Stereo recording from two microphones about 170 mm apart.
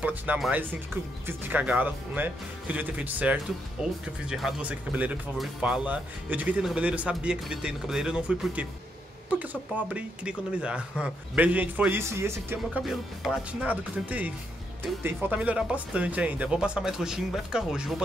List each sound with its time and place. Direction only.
0.0 s speech: 10° right (ahead or behind)
12.6 s speech: centre (ahead or behind)